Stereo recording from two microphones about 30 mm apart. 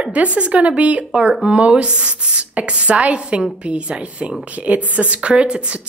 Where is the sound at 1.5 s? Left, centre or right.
Right.